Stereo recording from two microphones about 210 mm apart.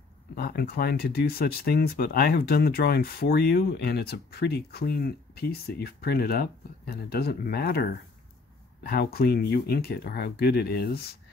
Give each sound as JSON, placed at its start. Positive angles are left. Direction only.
{"t": 0.4, "sound": "speech", "side_deg": 45}